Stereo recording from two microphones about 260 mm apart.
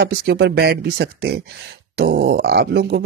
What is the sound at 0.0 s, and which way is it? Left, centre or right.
Speech, right.